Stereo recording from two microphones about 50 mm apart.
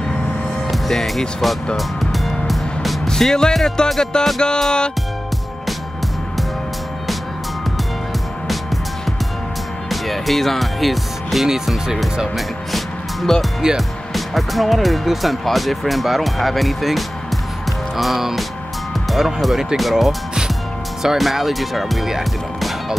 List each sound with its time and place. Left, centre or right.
0.7 s music: centre
9.8 s speech: centre